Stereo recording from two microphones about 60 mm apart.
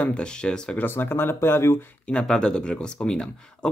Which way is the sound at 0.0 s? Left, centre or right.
Centre.